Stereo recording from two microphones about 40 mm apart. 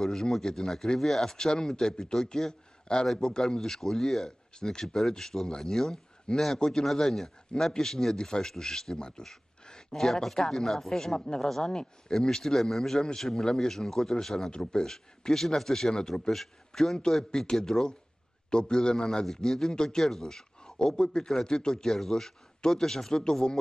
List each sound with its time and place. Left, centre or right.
0.0 s a man's voice: centre
8.9 s a man's voice: left
11.1 s a man's voice: centre
14.5 s a man's voice: left
14.8 s a man's voice: centre
16.3 s a man's voice: centre